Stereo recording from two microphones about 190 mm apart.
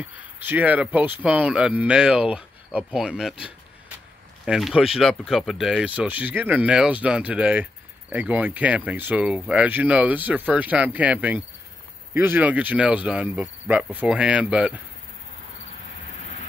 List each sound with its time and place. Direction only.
0.4 s speech: 10° right (ahead or behind)